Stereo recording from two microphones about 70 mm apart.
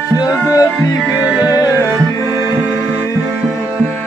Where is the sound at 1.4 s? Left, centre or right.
Left.